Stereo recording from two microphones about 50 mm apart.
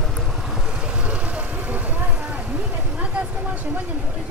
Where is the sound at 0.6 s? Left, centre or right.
Centre.